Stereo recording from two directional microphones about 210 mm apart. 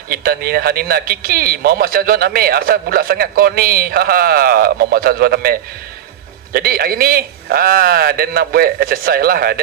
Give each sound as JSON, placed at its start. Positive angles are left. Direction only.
{"t": 0.1, "sound": "speech", "side_deg": -45}